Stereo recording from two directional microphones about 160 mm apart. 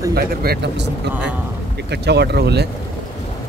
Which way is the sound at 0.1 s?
75° right (ahead or behind).